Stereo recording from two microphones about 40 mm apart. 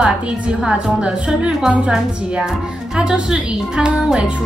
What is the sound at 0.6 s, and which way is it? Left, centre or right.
Speech, centre.